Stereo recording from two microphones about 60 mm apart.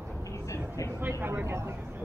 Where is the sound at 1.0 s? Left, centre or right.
Right.